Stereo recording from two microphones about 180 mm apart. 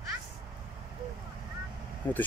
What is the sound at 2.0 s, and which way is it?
Speech, 10° left (ahead or behind).